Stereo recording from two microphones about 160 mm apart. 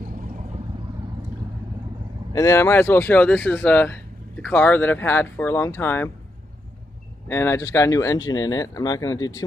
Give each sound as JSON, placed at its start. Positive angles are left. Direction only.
{"t": 2.3, "sound": "speech", "side_deg": 20}
{"t": 7.2, "sound": "speech", "side_deg": 15}